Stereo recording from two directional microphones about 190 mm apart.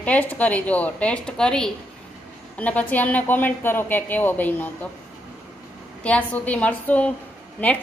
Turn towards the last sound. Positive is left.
turn(degrees=10)  # may be behind; listen again after turning